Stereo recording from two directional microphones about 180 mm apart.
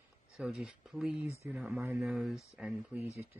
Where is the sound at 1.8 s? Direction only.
15° right (ahead or behind).